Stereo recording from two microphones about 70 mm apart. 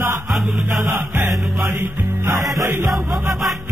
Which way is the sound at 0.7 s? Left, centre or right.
Right.